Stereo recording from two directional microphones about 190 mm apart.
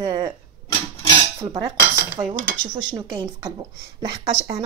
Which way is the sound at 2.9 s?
20° right (ahead or behind).